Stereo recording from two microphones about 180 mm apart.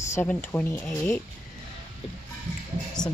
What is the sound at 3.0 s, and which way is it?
Speech, 20° left (ahead or behind).